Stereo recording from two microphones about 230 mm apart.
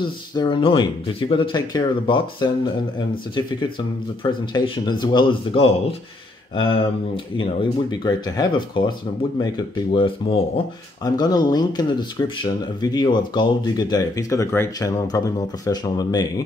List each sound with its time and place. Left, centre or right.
0.0 s speech: centre
4.2 s speech: left
8.0 s speech: centre